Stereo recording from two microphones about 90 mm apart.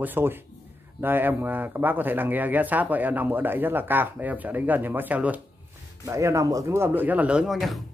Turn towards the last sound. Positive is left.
turn(degrees=0)  # may be behind; listen again after turning